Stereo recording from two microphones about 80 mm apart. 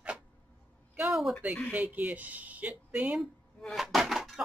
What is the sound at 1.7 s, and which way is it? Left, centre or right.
Speech, centre.